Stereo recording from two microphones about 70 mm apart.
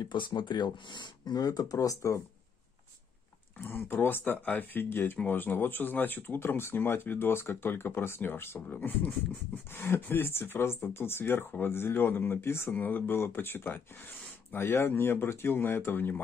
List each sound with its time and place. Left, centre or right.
0.0 s speech: left
3.6 s speech: left
8.6 s speech: left
9.7 s speech: left